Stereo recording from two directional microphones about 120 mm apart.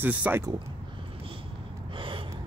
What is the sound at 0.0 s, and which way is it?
Speech, 15° right (ahead or behind).